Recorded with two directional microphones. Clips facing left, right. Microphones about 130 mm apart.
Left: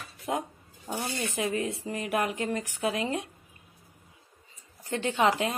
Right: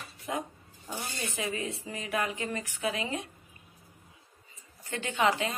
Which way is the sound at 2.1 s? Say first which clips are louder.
Left 3 dB; 50° left (ahead or behind).